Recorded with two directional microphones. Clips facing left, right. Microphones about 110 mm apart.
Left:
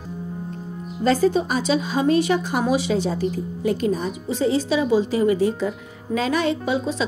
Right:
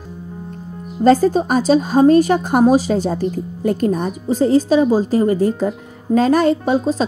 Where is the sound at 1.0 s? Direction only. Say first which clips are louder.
Right 6 dB; 45° right (ahead or behind).